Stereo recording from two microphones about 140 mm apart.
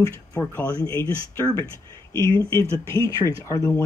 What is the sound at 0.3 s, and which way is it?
Speech, 15° left (ahead or behind).